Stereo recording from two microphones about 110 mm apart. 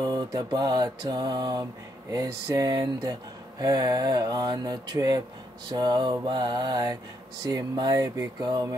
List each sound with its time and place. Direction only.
0.0 s speech: 35° right (ahead or behind)